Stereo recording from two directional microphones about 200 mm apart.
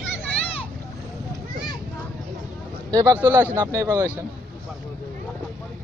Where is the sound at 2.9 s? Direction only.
15° right (ahead or behind).